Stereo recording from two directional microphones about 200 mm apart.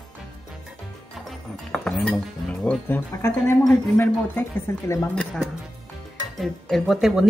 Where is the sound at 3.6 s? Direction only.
10° left (ahead or behind).